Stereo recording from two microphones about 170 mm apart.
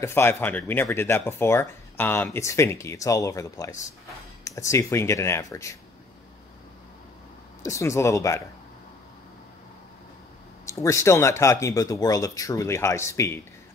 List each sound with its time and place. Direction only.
0.0 s speech: 15° left (ahead or behind)
7.6 s speech: 15° left (ahead or behind)
10.6 s speech: 15° left (ahead or behind)